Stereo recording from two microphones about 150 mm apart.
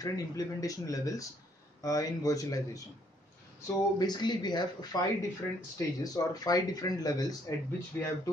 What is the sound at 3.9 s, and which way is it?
Speech, 30° left (ahead or behind).